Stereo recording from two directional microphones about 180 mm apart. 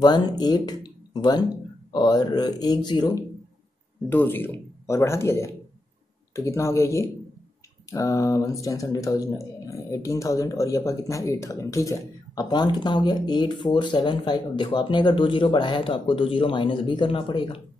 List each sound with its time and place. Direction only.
0.0 s speech: 25° left (ahead or behind)
4.1 s speech: 10° left (ahead or behind); by 17.6 s 30° left (ahead or behind)